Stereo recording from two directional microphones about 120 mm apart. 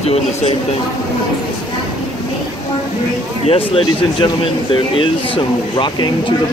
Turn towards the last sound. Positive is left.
turn(degrees=40)  # may be behind; listen again after turning